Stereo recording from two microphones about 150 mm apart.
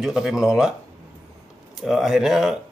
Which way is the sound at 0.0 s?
5° right (ahead or behind).